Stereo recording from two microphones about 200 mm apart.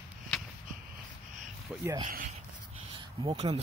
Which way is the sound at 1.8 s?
20° right (ahead or behind).